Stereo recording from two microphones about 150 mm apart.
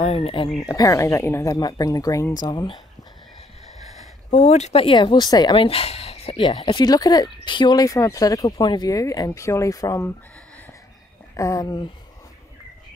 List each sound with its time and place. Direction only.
0.0 s speech: 40° left (ahead or behind)
0.7 s speech: 25° left (ahead or behind)
4.3 s speech: 50° left (ahead or behind); by 10.1 s 20° left (ahead or behind)
11.3 s speech: 20° left (ahead or behind)